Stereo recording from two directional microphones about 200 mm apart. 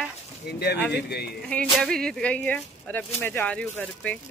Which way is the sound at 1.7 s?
Centre (ahead or behind).